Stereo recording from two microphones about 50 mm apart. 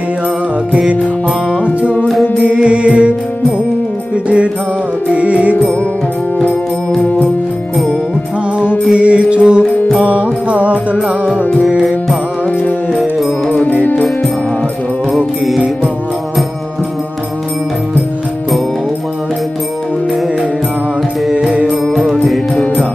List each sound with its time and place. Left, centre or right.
2.4 s music: right
5.1 s music: right
8.9 s music: right
13.5 s music: left
21.3 s music: centre
21.9 s music: centre